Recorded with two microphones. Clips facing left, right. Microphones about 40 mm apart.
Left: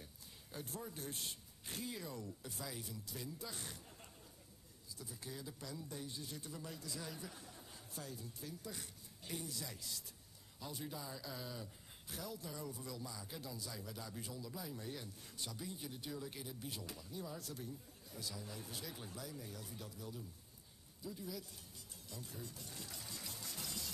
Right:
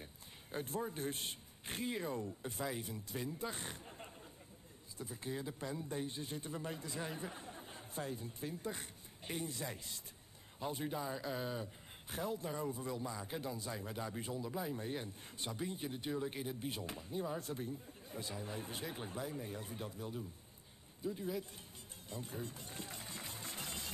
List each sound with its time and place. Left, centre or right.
0.0 s a man's voice: right
22.1 s music: right